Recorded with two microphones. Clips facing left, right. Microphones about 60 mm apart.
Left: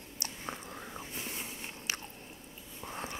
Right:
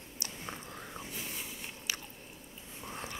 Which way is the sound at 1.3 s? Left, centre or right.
Left.